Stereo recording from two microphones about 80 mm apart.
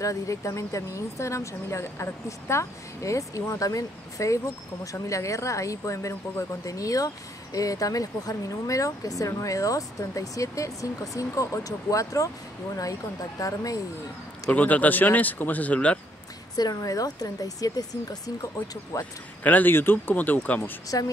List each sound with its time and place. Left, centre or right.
0.0 s speech: left
13.4 s speech: left
14.5 s speech: centre
16.5 s speech: left
18.9 s speech: left
20.9 s speech: left